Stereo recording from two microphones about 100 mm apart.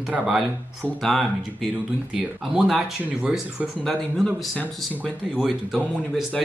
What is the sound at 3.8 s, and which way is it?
Speech, 5° left (ahead or behind).